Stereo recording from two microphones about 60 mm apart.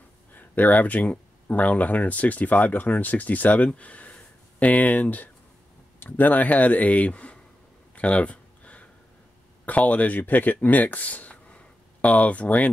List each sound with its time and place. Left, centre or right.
0.3 s speech: left
7.9 s a sound: left
9.7 s speech: left